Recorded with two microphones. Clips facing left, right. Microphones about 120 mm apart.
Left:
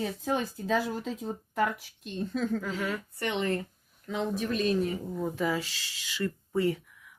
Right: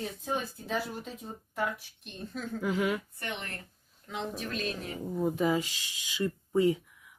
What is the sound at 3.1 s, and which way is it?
Speech, 90° left.